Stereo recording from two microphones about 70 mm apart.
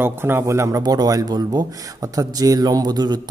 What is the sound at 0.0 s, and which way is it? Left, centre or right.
Speech, right.